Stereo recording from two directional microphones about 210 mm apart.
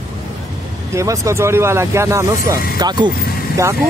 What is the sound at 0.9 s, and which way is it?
Speech, 15° right (ahead or behind).